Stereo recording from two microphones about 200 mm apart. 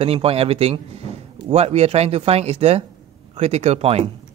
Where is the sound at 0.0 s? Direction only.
30° right (ahead or behind).